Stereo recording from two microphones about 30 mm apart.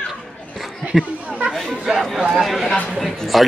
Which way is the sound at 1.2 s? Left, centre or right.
Right.